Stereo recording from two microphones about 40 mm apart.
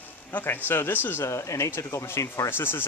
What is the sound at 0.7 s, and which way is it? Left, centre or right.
Speech, left.